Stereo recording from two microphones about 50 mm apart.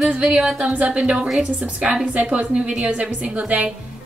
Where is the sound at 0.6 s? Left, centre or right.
Right.